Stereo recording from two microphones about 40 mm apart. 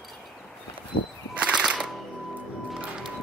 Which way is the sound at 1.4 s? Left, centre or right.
Right.